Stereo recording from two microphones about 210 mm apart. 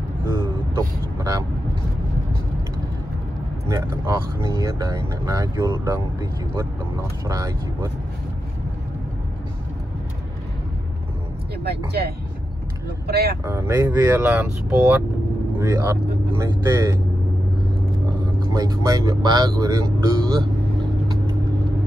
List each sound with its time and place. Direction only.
0.3 s speech: 15° right (ahead or behind)
3.6 s speech: 15° right (ahead or behind)
7.2 s speech: 15° right (ahead or behind)
13.0 s speech: 50° right (ahead or behind)
13.5 s speech: 10° right (ahead or behind)
18.4 s speech: 15° right (ahead or behind)